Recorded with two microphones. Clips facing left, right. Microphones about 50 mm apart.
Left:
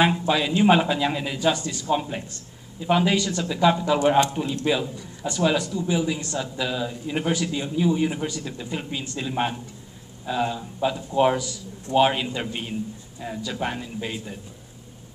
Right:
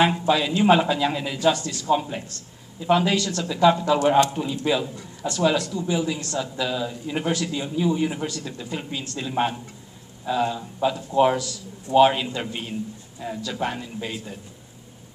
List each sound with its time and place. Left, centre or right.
0.3 s a man's voice: centre
1.9 s a man's voice: centre